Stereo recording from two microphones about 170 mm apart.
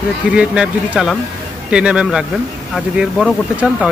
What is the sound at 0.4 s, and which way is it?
Speech, 5° right (ahead or behind).